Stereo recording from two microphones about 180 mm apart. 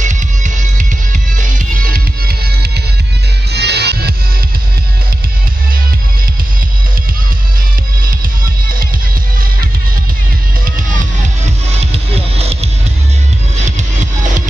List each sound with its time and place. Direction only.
0.0 s music: 45° right (ahead or behind)
3.5 s music: 65° right (ahead or behind)
11.8 s music: 35° right (ahead or behind)